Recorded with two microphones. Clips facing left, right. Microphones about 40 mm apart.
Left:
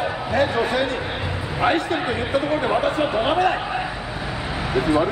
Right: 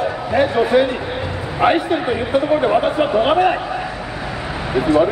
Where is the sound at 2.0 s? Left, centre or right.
Centre.